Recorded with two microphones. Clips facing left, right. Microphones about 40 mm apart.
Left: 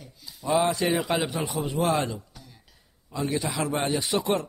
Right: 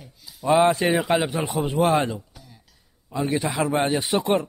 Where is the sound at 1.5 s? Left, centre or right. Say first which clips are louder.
Right 6 dB; right.